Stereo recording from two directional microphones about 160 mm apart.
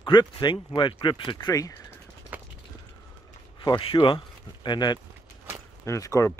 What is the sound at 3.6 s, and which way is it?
Speech, 30° left (ahead or behind).